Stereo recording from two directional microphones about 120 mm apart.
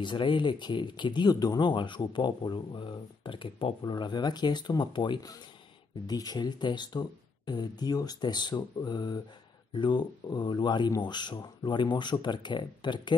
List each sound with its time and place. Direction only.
0.0 s speech: 40° left (ahead or behind)